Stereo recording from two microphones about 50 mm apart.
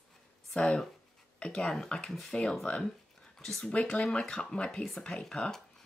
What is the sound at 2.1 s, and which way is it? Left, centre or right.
Speech, centre.